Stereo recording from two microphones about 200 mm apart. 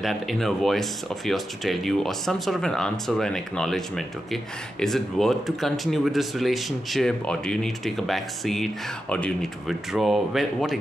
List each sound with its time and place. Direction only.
0.0 s speech: centre (ahead or behind)